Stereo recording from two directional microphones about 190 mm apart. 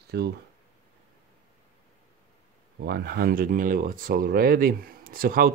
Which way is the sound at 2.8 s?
55° right (ahead or behind).